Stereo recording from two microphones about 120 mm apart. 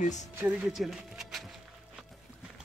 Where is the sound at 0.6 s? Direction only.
5° right (ahead or behind).